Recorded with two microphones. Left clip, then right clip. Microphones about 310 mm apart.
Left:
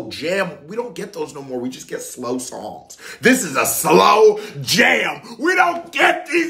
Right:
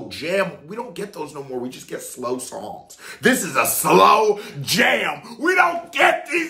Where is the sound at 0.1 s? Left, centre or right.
Centre.